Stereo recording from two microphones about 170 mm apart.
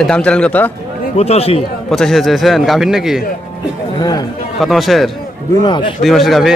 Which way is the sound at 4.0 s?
20° left (ahead or behind).